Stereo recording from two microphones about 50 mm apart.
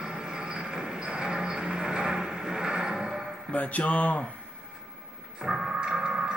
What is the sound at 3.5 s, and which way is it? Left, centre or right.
Speech, left.